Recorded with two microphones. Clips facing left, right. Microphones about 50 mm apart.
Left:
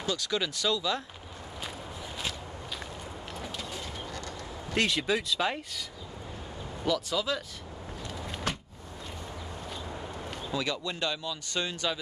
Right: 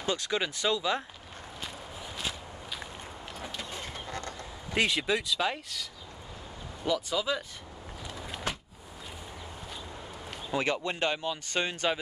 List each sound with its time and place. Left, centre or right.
0.0 s speech: right
3.3 s vehicle: centre
3.8 s vehicle: right
4.7 s speech: centre
6.9 s speech: centre
8.1 s a sound: centre
10.5 s speech: right